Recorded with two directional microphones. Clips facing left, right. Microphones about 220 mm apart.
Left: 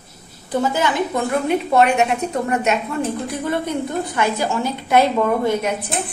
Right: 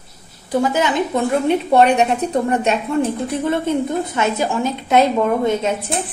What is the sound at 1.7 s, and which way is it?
A woman's voice, 35° right (ahead or behind).